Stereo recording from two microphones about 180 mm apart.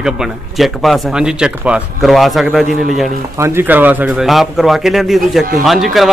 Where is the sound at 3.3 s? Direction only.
15° right (ahead or behind).